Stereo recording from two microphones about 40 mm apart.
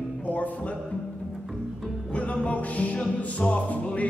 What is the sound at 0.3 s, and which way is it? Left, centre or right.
Music, left.